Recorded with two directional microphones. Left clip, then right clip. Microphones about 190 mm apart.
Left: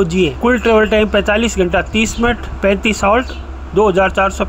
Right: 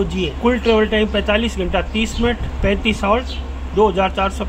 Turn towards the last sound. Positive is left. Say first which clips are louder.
# left 5 dB
turn(degrees=25)  # may be behind; listen again after turning